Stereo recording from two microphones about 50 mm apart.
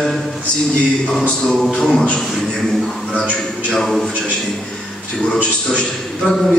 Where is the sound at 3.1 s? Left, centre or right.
Centre.